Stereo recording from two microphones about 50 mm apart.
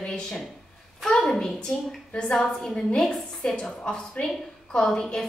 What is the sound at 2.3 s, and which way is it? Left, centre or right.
A woman's voice, centre.